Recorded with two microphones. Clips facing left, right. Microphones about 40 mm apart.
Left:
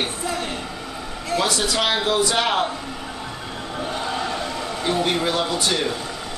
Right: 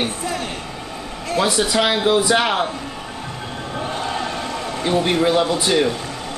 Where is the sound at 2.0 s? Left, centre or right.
Centre.